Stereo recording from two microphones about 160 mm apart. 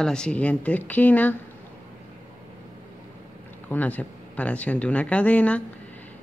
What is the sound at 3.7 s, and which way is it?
Speech, 10° left (ahead or behind).